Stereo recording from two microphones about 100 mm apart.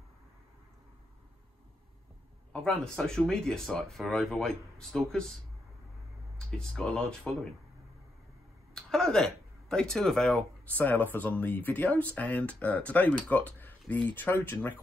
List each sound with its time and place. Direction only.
2.5 s speech: 5° left (ahead or behind)
6.3 s speech: 10° left (ahead or behind)
8.7 s speech: 5° left (ahead or behind); by 14.8 s 20° left (ahead or behind)